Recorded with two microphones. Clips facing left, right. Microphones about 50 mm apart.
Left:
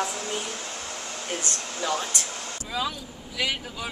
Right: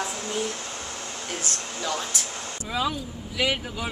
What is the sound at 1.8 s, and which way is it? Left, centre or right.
Speech, centre.